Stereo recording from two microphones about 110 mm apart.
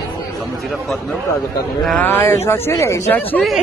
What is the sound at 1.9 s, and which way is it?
Speech, 20° left (ahead or behind).